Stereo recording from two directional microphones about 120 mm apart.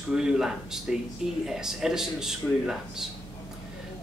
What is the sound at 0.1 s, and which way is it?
Speech, 5° right (ahead or behind).